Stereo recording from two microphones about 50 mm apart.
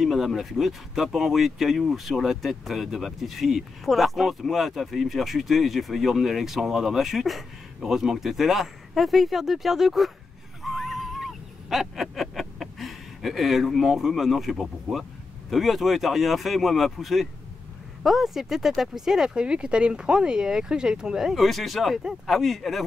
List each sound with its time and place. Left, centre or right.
0.0 s speech: centre
10.6 s a sound: centre
15.5 s speech: centre
21.5 s speech: centre